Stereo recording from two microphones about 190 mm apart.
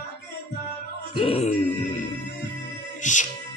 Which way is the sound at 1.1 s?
30° left (ahead or behind).